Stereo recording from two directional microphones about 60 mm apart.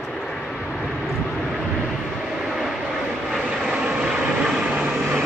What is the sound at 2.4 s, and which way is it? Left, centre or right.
Vehicle, centre.